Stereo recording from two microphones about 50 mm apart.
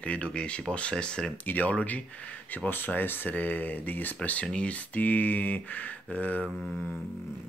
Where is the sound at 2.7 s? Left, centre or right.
Left.